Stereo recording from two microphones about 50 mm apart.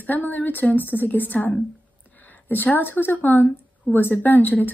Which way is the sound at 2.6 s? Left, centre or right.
Left.